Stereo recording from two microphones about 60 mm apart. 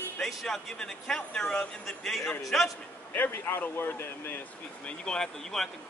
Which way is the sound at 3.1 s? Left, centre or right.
Left.